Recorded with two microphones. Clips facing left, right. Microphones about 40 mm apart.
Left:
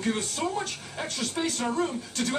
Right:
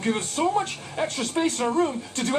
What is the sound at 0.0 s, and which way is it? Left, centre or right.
Speech, right.